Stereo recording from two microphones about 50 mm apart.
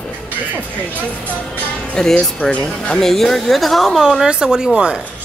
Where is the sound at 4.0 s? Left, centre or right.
Centre.